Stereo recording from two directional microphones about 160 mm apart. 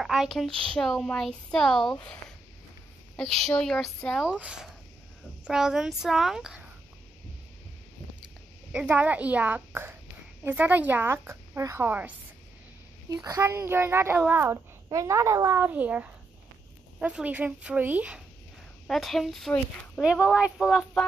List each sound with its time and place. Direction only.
0.0 s speech: centre (ahead or behind)
8.7 s a child's voice: 10° right (ahead or behind)
13.1 s a child's voice: 20° right (ahead or behind); by 20.8 s 5° right (ahead or behind)